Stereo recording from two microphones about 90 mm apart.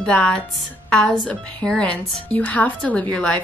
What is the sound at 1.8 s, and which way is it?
Speech, 15° left (ahead or behind).